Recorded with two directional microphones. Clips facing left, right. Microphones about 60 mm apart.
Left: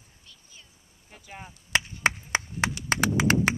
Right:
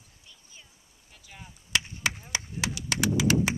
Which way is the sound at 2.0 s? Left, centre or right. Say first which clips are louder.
Left 6 dB; left.